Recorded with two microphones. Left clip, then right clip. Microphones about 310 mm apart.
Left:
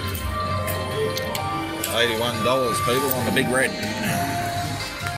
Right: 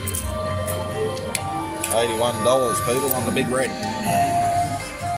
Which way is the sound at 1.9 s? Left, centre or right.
Centre.